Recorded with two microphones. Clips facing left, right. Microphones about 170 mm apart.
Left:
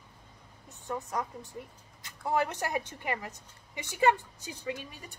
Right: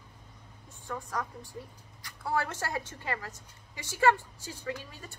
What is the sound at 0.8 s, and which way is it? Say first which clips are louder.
A woman's voice: left 2 dB; 20° left (ahead or behind).